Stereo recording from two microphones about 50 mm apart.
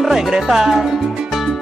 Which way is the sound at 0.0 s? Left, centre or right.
Centre.